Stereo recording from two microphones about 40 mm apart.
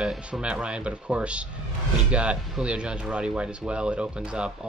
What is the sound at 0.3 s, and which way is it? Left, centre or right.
Speech, right.